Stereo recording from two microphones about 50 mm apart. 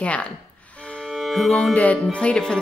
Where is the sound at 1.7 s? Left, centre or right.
Left.